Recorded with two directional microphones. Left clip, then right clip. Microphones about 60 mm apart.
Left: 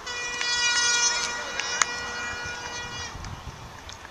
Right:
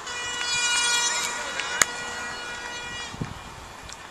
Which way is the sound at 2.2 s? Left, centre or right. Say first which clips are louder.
Left 1 dB; left.